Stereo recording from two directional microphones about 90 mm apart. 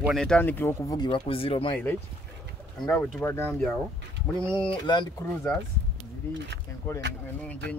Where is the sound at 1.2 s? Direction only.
90° left.